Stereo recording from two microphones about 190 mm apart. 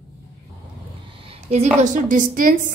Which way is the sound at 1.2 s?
30° right (ahead or behind).